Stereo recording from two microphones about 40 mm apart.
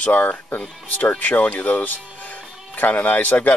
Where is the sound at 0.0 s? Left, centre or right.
Left.